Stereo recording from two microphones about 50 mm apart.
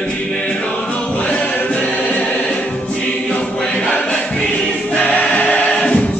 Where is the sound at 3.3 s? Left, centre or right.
Centre.